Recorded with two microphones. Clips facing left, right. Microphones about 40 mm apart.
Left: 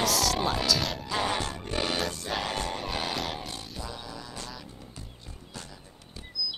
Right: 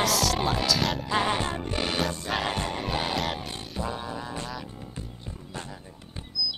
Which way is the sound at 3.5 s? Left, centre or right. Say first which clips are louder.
Right 6 dB; right.